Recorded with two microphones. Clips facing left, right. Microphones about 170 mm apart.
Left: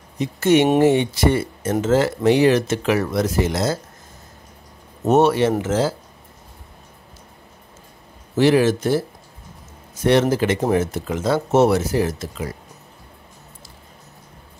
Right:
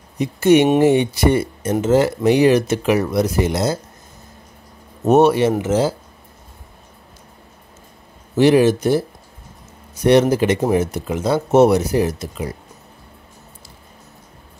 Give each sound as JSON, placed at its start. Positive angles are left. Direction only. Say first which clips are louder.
{"t": 0.2, "sound": "speech", "louder": "right 3 dB", "side_deg": -15}
{"t": 5.0, "sound": "speech", "louder": "right 3 dB", "side_deg": -15}
{"t": 8.4, "sound": "speech", "louder": "right 3 dB", "side_deg": -15}
{"t": 10.0, "sound": "speech", "louder": "right 3 dB", "side_deg": -15}